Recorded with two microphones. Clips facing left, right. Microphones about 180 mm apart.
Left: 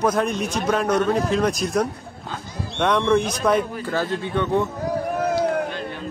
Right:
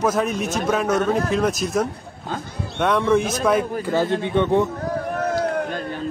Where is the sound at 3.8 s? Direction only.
15° right (ahead or behind).